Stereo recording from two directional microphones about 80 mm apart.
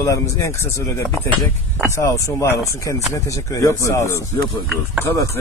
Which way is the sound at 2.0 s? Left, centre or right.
Left.